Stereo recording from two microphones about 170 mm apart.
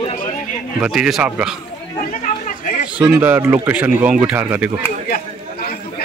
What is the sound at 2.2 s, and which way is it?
Chatter, 55° left (ahead or behind).